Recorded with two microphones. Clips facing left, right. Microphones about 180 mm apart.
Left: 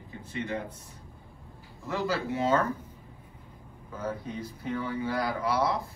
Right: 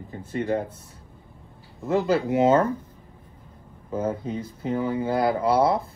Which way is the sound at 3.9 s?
25° right (ahead or behind).